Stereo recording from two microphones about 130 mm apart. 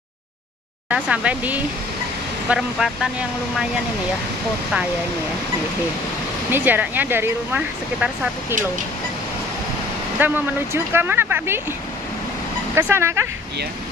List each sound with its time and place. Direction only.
0.8 s speech: 10° right (ahead or behind)
6.5 s speech: 15° right (ahead or behind)
10.1 s speech: 15° right (ahead or behind)
12.7 s speech: 20° right (ahead or behind)